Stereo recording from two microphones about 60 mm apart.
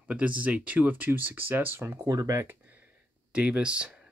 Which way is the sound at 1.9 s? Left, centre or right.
Right.